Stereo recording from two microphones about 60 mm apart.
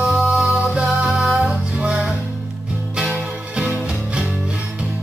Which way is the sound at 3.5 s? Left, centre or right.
Centre.